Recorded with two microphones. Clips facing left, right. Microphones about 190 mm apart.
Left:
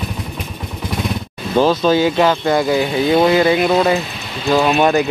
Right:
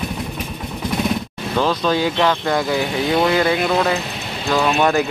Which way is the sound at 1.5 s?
30° left (ahead or behind).